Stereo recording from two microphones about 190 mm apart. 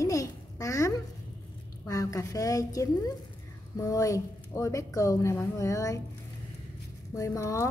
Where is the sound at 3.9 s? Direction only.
15° left (ahead or behind).